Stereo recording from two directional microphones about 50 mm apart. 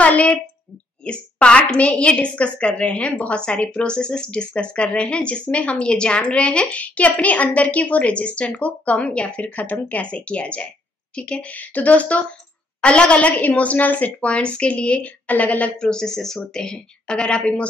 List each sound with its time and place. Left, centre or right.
0.0 s a woman's voice: left
15.9 s a woman's voice: centre